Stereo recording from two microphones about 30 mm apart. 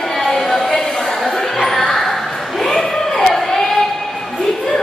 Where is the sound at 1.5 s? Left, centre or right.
Centre.